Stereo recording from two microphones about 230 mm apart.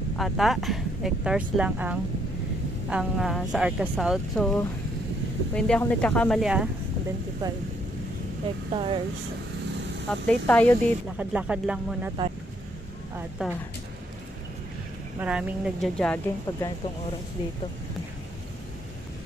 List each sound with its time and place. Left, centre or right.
0.2 s speech: centre
8.7 s speech: right
10.2 s speech: centre
11.1 s speech: centre
13.4 s speech: centre
15.1 s speech: centre